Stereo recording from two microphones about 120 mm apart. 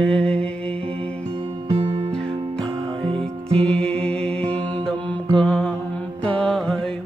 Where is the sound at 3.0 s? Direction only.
50° right (ahead or behind).